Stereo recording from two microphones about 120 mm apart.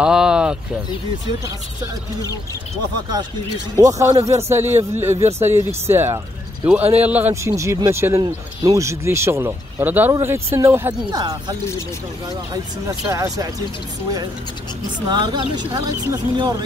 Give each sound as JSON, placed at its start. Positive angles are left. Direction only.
{"t": 0.0, "sound": "a sound", "side_deg": -5}
{"t": 3.7, "sound": "a man's voice", "side_deg": -30}
{"t": 7.5, "sound": "speech", "side_deg": -25}
{"t": 11.1, "sound": "speech", "side_deg": -35}
{"t": 12.8, "sound": "speech", "side_deg": -30}
{"t": 15.0, "sound": "speech", "side_deg": -40}